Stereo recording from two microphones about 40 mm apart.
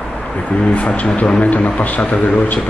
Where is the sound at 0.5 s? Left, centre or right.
Left.